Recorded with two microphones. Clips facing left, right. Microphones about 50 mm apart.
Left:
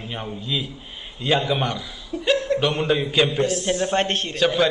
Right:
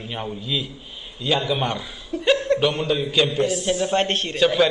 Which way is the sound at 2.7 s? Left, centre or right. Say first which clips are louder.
Left 1 dB; left.